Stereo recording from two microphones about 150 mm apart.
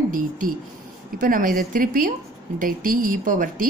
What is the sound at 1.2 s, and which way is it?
A woman's voice, 65° right (ahead or behind).